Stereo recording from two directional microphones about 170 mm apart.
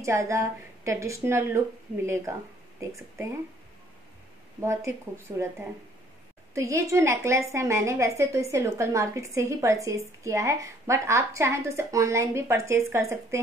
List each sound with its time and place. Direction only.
0.0 s a woman's voice: 15° right (ahead or behind)
4.6 s a woman's voice: 15° right (ahead or behind)